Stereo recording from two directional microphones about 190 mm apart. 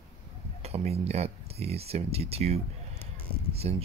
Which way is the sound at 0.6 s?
35° right (ahead or behind).